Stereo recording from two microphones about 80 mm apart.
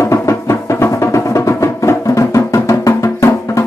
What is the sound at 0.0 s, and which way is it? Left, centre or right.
Music, left.